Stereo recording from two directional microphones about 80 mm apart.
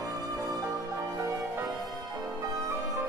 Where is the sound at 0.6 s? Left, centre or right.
Right.